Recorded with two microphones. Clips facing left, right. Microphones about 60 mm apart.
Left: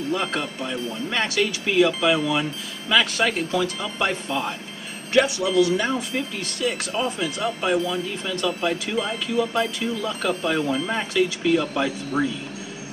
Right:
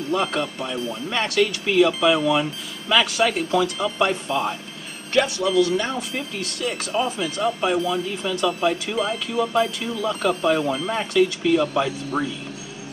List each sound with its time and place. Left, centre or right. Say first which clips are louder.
0.1 s speech: right 4 dB; centre